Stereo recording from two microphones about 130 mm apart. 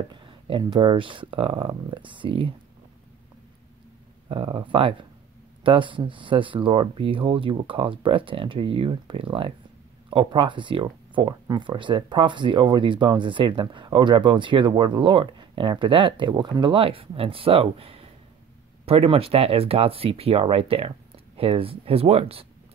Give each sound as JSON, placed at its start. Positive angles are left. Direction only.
{"t": 0.1, "sound": "speech", "side_deg": -40}
{"t": 4.3, "sound": "speech", "side_deg": -40}